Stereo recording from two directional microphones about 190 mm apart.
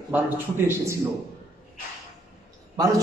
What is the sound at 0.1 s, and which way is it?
Speech, 10° right (ahead or behind).